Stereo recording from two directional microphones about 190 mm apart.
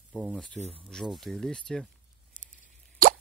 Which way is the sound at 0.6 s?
35° right (ahead or behind).